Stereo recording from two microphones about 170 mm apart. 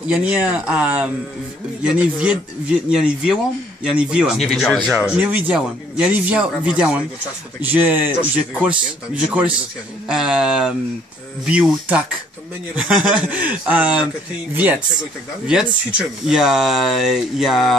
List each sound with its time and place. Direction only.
0.1 s speech: 5° right (ahead or behind)
3.8 s speech: 5° right (ahead or behind)